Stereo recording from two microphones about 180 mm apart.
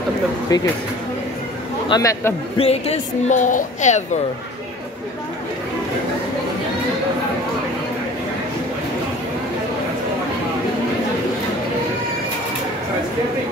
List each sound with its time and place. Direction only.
0.5 s a man's voice: 20° left (ahead or behind)
1.9 s a man's voice: 20° left (ahead or behind)
2.5 s a woman's voice: 35° left (ahead or behind)